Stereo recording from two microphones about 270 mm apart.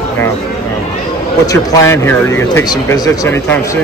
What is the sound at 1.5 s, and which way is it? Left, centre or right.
Speech, centre.